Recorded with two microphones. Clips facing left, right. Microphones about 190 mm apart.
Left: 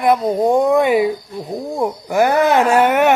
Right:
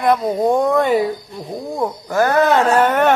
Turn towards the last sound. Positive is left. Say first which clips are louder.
# left 1 dB
turn(degrees=10)  # may be behind; listen again after turning